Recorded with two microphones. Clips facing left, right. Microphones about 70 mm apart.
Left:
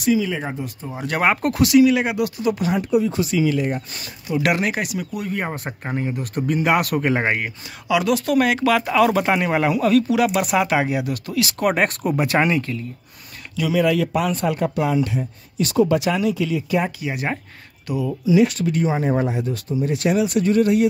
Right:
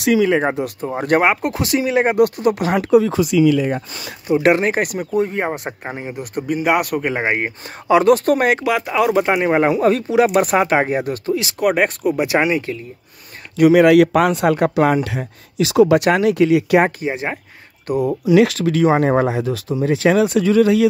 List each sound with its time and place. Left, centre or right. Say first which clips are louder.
0.0 s speech: right 6 dB; right
1.2 s speech: right 2 dB; centre
1.6 s speech: left 5 dB; right
4.3 s speech: right 6 dB; right; by 7.2 s centre
7.3 s speech: right 4 dB; right
8.6 s speech: even; centre
11.6 s speech: right 4 dB; centre
13.6 s speech: right 9 dB; right
15.0 s speech: even; right
17.0 s speech: right 4 dB; right
17.8 s speech: right 5 dB; right
18.3 s speech: right 3 dB; right